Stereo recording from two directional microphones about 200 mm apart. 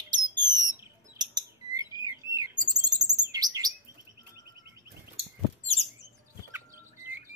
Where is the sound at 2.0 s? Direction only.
20° right (ahead or behind).